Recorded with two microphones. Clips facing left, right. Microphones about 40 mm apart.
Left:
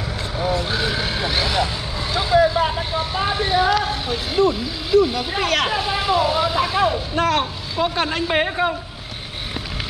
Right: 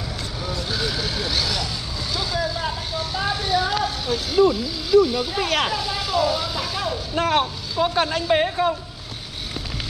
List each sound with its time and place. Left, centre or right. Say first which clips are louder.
0.4 s vehicle: left 6 dB; left
5.7 s speech: left 5 dB; left
7.7 s speech: even; centre